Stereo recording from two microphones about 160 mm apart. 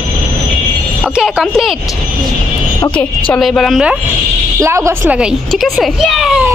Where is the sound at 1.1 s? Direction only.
5° right (ahead or behind).